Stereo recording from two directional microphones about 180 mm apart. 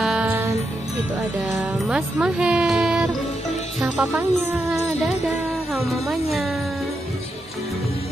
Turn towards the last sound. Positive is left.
turn(degrees=0)  # may be behind; listen again after turning